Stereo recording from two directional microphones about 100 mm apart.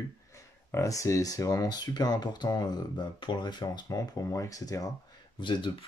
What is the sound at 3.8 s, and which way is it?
Speech, 30° left (ahead or behind).